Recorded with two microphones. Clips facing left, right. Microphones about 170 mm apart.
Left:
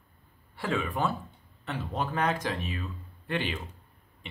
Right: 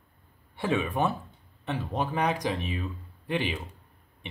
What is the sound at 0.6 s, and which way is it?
Speech, 20° right (ahead or behind).